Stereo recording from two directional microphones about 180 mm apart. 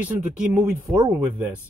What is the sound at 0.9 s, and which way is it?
Speech, 15° right (ahead or behind).